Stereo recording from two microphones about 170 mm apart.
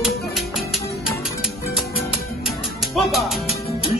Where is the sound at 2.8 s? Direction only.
Centre (ahead or behind).